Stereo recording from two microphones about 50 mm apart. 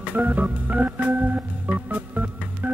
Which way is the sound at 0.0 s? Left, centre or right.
Right.